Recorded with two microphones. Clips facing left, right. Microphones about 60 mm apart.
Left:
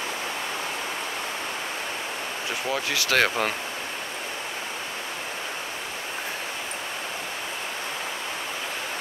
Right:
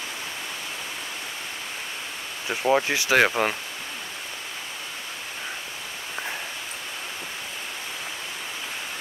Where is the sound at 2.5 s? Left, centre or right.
Right.